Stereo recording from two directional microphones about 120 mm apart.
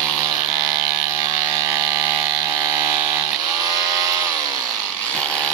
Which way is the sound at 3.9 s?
30° right (ahead or behind).